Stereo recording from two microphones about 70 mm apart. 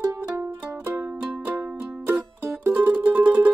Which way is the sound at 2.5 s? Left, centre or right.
Centre.